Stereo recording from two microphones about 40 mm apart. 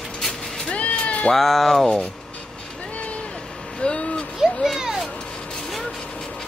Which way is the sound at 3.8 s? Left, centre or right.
Left.